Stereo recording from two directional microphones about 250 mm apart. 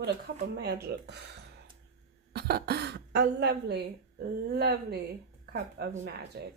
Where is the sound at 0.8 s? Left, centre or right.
Right.